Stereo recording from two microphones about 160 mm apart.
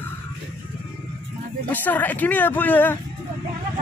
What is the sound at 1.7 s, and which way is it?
Speech, 10° left (ahead or behind).